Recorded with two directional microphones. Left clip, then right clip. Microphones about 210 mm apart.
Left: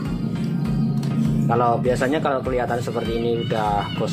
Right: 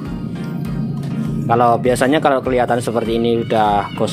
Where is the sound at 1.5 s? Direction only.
45° right (ahead or behind).